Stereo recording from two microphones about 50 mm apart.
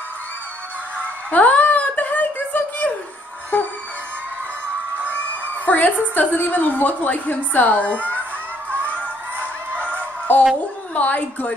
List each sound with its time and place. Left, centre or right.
1.3 s a sound: left
3.5 s music: left
5.0 s a woman's voice: left
8.9 s crowd: right
9.8 s music: left
11.0 s a woman's voice: left